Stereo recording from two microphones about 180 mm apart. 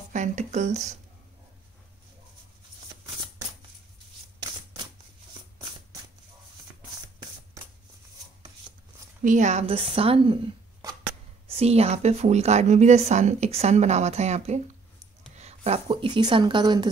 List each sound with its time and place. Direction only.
0.1 s a woman's voice: 40° right (ahead or behind)
9.2 s a woman's voice: 45° right (ahead or behind); by 16.9 s 25° right (ahead or behind)